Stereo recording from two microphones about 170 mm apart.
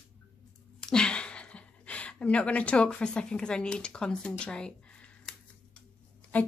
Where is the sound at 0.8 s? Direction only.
5° left (ahead or behind).